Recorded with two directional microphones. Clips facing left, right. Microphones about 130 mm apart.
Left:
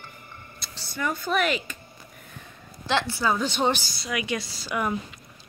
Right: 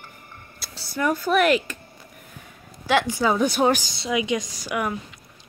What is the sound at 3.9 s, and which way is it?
Speech, 25° right (ahead or behind).